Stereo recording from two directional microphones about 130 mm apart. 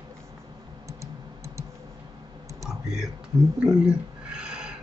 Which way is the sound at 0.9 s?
20° right (ahead or behind).